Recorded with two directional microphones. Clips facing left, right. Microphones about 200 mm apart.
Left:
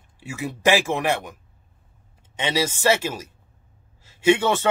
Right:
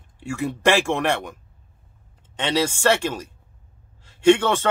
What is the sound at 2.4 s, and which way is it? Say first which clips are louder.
A man's voice: right 2 dB; 10° left (ahead or behind).